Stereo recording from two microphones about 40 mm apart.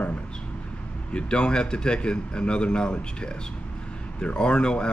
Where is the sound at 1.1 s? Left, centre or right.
Left.